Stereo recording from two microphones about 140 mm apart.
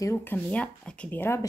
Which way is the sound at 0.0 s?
15° left (ahead or behind).